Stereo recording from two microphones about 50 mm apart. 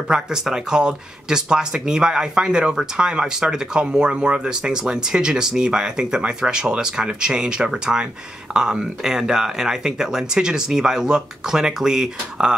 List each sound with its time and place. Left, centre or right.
0.1 s speech: centre